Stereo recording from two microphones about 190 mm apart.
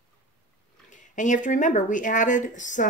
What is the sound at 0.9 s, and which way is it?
Speech, 40° left (ahead or behind).